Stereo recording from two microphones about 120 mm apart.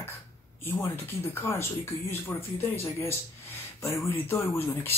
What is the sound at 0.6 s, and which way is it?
Speech, 20° left (ahead or behind).